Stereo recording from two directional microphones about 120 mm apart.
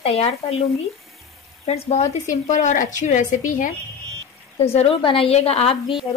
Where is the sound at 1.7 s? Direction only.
65° left (ahead or behind).